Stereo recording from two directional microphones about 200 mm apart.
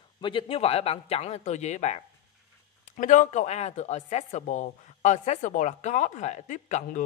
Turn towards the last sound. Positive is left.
turn(degrees=40)  # may be behind; listen again after turning